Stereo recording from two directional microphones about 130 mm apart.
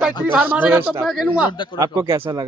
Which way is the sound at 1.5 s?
40° left (ahead or behind).